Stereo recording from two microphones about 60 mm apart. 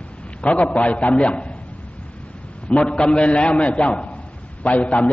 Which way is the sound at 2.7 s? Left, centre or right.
Centre.